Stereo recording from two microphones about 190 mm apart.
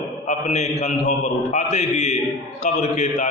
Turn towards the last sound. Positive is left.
turn(degrees=35)  # may be behind; listen again after turning